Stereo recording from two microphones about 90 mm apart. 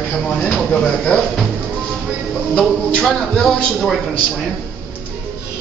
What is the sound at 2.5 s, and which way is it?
A man's voice, 10° left (ahead or behind).